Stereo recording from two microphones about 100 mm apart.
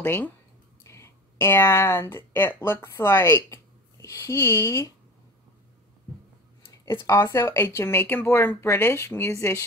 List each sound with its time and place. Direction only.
0.0 s speech: 25° left (ahead or behind)
7.1 s speech: 30° left (ahead or behind)